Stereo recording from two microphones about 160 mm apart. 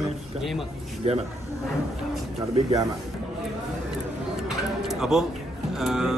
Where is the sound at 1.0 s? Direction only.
40° right (ahead or behind).